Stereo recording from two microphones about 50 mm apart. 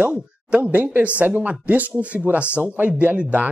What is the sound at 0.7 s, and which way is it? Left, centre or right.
Speech, right.